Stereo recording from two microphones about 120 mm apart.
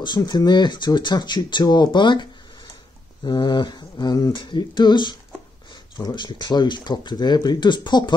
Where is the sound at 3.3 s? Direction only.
40° left (ahead or behind).